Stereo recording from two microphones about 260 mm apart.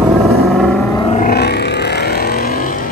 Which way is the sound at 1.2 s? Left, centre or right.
Left.